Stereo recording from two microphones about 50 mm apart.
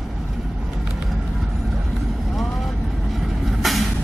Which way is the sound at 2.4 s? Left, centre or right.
Centre.